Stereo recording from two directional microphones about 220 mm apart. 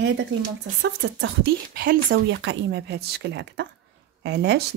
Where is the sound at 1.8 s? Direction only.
40° right (ahead or behind).